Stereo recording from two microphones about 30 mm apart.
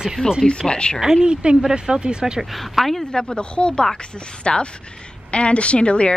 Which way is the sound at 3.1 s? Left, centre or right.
Left.